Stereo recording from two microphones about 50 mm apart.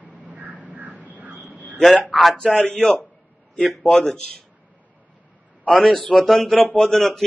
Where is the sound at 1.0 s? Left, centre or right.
Right.